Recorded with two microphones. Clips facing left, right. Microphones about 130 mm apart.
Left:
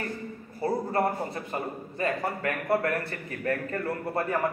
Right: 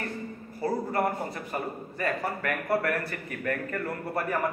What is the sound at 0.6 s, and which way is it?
A man's voice, 25° left (ahead or behind).